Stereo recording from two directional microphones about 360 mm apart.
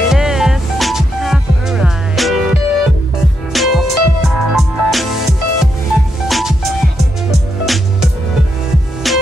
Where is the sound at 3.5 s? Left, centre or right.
Centre.